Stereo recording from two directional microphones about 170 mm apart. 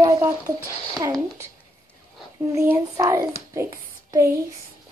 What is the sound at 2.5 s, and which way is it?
Speech, 15° right (ahead or behind).